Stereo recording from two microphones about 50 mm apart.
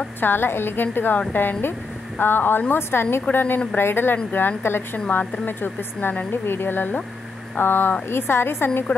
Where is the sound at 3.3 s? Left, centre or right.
Left.